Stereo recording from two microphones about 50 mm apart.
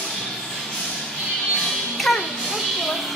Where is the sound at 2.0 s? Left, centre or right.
Centre.